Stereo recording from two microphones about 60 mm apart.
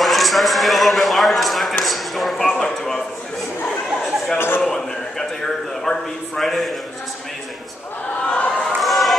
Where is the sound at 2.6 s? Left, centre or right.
Centre.